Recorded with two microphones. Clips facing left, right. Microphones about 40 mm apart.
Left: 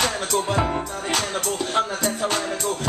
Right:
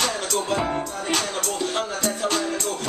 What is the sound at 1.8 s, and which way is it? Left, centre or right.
Music, centre.